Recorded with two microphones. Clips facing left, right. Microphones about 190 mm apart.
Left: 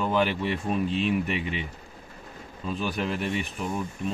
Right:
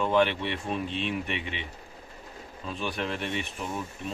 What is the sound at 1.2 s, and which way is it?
Speech, 40° left (ahead or behind).